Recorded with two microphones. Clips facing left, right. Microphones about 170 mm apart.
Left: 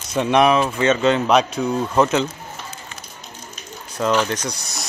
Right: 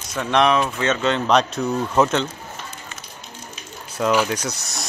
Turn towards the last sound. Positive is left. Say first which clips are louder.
# even
turn(degrees=-5)  # may be behind; listen again after turning